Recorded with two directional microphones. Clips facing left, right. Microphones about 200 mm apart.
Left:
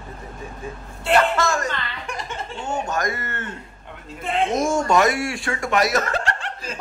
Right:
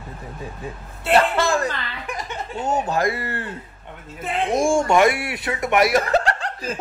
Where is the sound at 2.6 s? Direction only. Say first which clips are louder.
Right 4 dB; 35° right (ahead or behind).